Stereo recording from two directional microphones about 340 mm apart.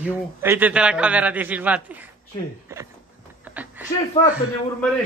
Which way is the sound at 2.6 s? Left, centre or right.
Centre.